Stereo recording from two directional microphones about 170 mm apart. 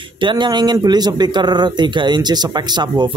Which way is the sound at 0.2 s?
25° right (ahead or behind).